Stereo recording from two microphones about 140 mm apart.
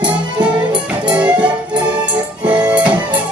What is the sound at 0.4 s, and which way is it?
Music, 10° right (ahead or behind).